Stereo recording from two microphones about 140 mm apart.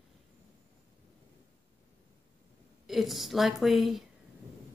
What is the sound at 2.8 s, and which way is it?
A woman's voice, centre (ahead or behind).